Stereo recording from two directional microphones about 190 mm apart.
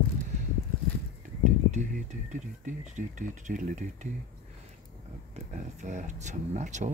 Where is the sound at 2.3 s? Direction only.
40° right (ahead or behind).